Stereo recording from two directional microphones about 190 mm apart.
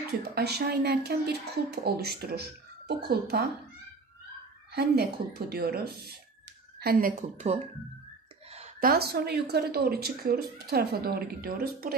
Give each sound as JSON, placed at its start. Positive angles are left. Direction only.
{"t": 0.2, "sound": "speech", "side_deg": -55}
{"t": 4.7, "sound": "a woman's voice", "side_deg": -55}
{"t": 8.8, "sound": "speech", "side_deg": -55}